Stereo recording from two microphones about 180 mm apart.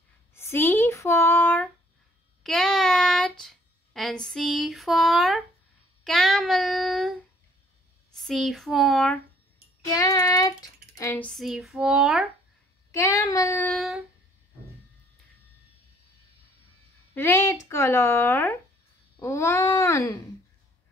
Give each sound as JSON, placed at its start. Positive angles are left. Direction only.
{"t": 0.3, "sound": "a sound", "side_deg": 15}
{"t": 6.0, "sound": "child singing", "side_deg": 0}
{"t": 8.1, "sound": "speech", "side_deg": 0}
{"t": 9.8, "sound": "child singing", "side_deg": 20}
{"t": 11.2, "sound": "speech", "side_deg": 0}
{"t": 12.9, "sound": "speech", "side_deg": 15}
{"t": 13.7, "sound": "speech", "side_deg": -5}
{"t": 17.1, "sound": "speech", "side_deg": 15}